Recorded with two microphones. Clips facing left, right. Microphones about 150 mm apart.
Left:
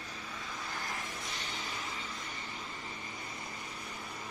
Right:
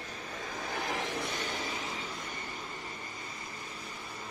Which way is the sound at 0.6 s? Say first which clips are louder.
Right 8 dB; 70° right (ahead or behind).